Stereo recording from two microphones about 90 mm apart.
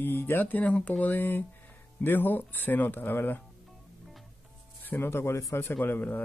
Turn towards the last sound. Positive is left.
turn(degrees=20)  # may be behind; listen again after turning